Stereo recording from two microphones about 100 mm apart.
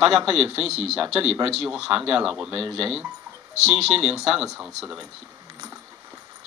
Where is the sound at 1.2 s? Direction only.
90° right.